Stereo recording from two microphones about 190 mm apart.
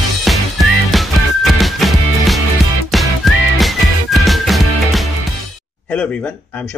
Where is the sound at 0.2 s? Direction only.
Centre (ahead or behind).